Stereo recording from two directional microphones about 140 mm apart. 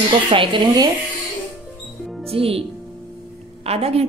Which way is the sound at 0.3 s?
35° right (ahead or behind).